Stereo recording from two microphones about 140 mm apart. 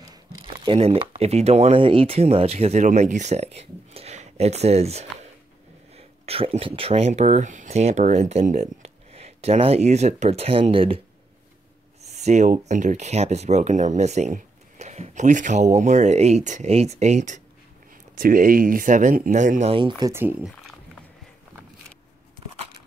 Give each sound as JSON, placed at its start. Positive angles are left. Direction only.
{"t": 0.1, "sound": "speech", "side_deg": -35}
{"t": 12.1, "sound": "a sound", "side_deg": -55}
{"t": 12.6, "sound": "speech", "side_deg": -60}
{"t": 18.1, "sound": "speech", "side_deg": -80}
{"t": 19.7, "sound": "speech", "side_deg": -35}
{"t": 20.1, "sound": "speech", "side_deg": -15}